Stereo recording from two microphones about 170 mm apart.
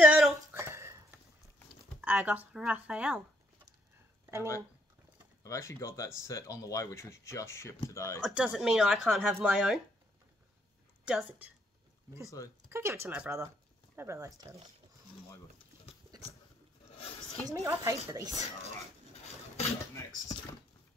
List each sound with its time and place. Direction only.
0.0 s a sound: 10° right (ahead or behind)
2.0 s speech: 10° right (ahead or behind)
5.4 s speech: 15° left (ahead or behind)
8.2 s speech: 5° right (ahead or behind)
11.1 s speech: 10° right (ahead or behind)
12.6 s speech: 15° right (ahead or behind)
17.5 s speech: 15° right (ahead or behind)
19.9 s a sound: 15° left (ahead or behind)